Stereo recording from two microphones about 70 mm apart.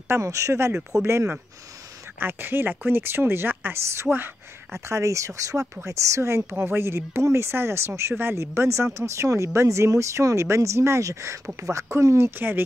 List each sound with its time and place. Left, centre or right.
0.1 s speech: right
12.4 s speech: right